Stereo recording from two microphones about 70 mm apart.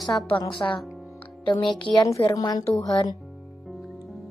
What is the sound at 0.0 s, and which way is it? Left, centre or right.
Speech, centre.